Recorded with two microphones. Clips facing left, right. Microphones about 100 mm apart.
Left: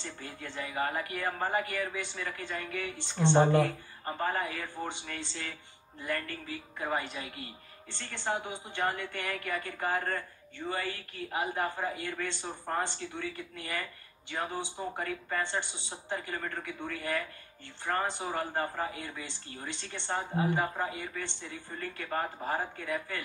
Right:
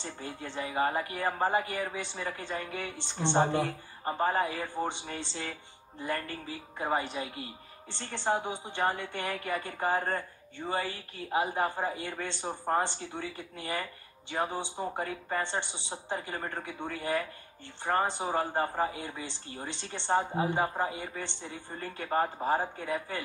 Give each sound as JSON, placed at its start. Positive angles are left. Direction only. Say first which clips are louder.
{"t": 0.0, "sound": "speech", "louder": "right 3 dB", "side_deg": -30}